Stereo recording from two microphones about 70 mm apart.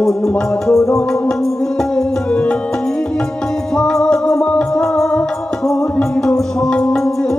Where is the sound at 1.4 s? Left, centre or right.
Centre.